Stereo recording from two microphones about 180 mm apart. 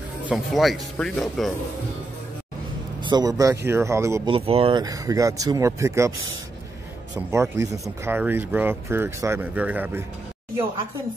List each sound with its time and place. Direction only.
0.3 s speech: centre (ahead or behind)
3.0 s speech: 25° right (ahead or behind)
4.3 s speech: 35° right (ahead or behind)
4.8 s speech: 20° right (ahead or behind)
7.2 s speech: 15° right (ahead or behind)